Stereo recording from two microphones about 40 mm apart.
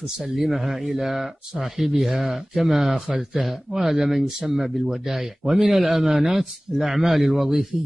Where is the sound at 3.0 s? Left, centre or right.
Right.